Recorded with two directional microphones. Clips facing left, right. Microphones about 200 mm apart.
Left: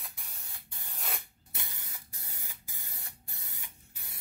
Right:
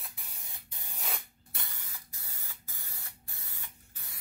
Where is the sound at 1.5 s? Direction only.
15° left (ahead or behind).